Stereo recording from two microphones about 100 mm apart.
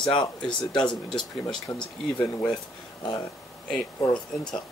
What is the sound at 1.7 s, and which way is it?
Speech, 35° left (ahead or behind).